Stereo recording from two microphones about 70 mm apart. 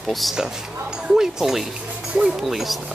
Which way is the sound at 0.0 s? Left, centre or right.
Centre.